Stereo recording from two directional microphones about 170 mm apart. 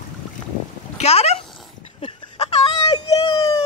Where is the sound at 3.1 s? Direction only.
20° left (ahead or behind).